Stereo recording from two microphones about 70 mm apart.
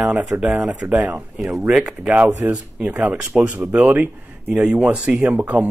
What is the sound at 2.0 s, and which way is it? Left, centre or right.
Speech, right.